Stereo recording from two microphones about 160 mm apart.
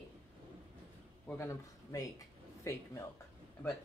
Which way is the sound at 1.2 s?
15° left (ahead or behind).